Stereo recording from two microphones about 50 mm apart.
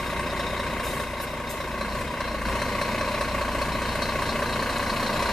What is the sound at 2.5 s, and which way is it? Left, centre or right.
Vehicle, centre.